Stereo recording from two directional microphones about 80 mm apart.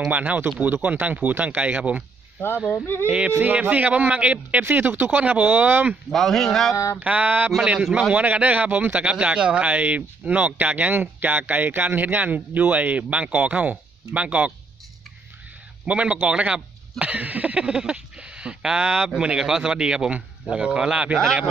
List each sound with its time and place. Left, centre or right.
0.1 s speech: centre
2.7 s speech: left
3.1 s speech: centre
6.1 s speech: centre
6.7 s mantra: left
7.0 s speech: right
15.8 s speech: centre